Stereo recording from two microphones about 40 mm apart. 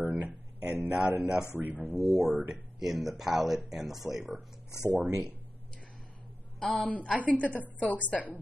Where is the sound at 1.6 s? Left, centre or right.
Right.